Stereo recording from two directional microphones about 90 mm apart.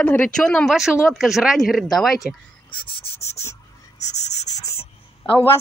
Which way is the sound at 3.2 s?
35° left (ahead or behind).